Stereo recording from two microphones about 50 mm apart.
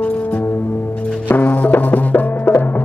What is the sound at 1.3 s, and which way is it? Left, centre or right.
Music, left.